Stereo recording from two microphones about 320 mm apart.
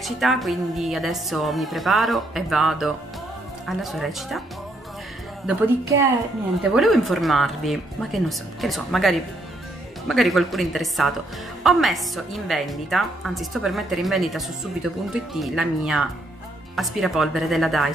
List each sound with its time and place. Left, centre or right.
0.0 s a woman's voice: centre
5.5 s a woman's voice: centre